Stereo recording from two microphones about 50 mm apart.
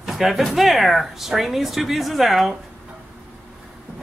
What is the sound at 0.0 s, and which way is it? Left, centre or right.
Speech, centre.